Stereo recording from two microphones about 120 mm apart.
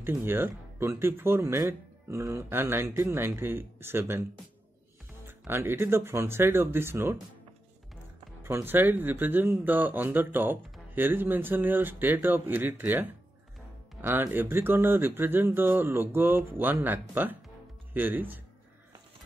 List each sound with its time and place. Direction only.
0.0 s speech: 15° right (ahead or behind)
5.5 s speech: 20° right (ahead or behind)
8.4 s speech: 20° right (ahead or behind)